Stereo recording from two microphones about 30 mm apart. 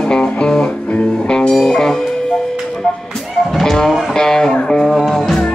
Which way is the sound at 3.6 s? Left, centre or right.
Centre.